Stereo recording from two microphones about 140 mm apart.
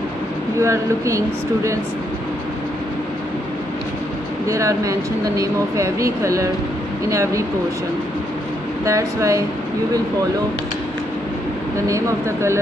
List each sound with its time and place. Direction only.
0.6 s speech: 20° right (ahead or behind)
4.5 s speech: 20° right (ahead or behind)
8.8 s speech: 20° right (ahead or behind)
11.9 s speech: 20° right (ahead or behind)